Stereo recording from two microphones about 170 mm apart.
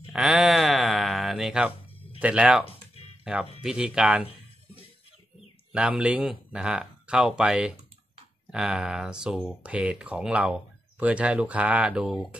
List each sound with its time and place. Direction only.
0.1 s a sound: 5° right (ahead or behind)
2.1 s speech: 10° right (ahead or behind)
2.6 s music: 35° left (ahead or behind)
3.6 s speech: 5° right (ahead or behind)
5.7 s speech: 5° right (ahead or behind)